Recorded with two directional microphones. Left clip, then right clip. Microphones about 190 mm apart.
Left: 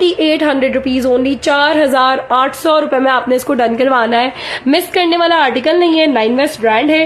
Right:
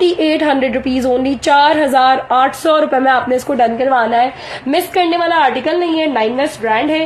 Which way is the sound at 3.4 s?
25° left (ahead or behind).